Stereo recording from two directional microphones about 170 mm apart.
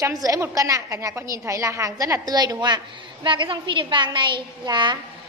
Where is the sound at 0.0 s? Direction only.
20° right (ahead or behind).